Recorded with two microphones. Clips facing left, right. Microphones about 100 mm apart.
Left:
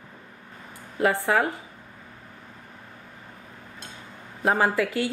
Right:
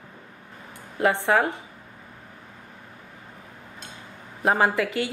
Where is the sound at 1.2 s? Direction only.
25° right (ahead or behind).